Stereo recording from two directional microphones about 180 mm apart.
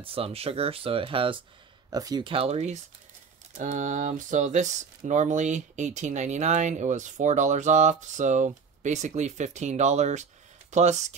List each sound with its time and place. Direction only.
0.0 s speech: 30° right (ahead or behind)